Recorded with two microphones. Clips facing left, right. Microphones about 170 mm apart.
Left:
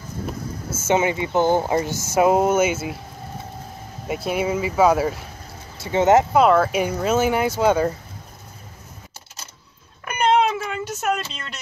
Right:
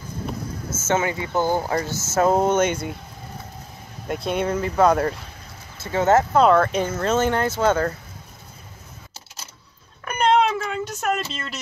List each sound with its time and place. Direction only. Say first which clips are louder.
0.8 s speech: left 3 dB; 20° left (ahead or behind)
4.1 s speech: left 1 dB; 5° left (ahead or behind)
5.8 s speech: left 2 dB; 20° left (ahead or behind)
6.4 s speech: even; 5° left (ahead or behind)
10.0 s a sound: even; 5° left (ahead or behind)